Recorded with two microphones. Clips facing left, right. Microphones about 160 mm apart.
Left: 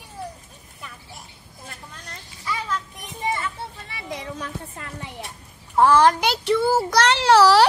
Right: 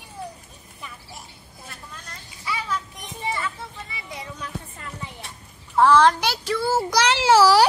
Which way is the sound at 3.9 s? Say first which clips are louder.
Left 4 dB; 75° left (ahead or behind).